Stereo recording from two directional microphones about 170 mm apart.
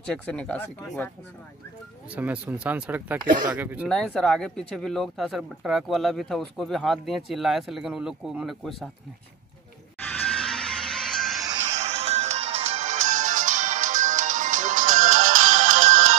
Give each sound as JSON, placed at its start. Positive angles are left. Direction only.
{"t": 0.0, "sound": "speech", "side_deg": 5}
{"t": 2.1, "sound": "speech", "side_deg": -10}
{"t": 3.9, "sound": "speech", "side_deg": 5}
{"t": 10.0, "sound": "music", "side_deg": 5}
{"t": 11.6, "sound": "music", "side_deg": -40}